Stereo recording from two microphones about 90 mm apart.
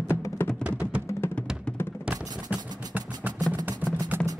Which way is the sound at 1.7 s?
25° left (ahead or behind).